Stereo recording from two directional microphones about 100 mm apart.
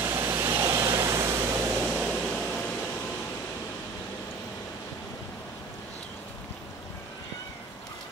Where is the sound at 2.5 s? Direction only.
15° left (ahead or behind).